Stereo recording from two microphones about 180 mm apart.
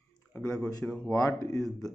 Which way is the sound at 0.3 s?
15° left (ahead or behind).